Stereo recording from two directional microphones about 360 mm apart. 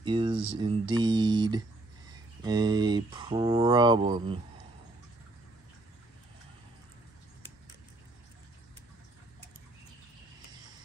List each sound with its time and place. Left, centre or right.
0.0 s speech: centre